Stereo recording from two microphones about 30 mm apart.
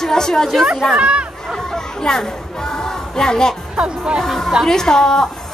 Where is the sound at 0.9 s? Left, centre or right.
Right.